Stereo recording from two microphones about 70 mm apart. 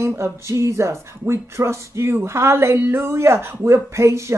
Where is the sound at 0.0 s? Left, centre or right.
Right.